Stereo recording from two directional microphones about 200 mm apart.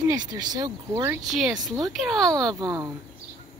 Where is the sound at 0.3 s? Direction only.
20° right (ahead or behind).